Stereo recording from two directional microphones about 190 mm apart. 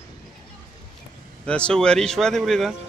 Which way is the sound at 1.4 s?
5° left (ahead or behind).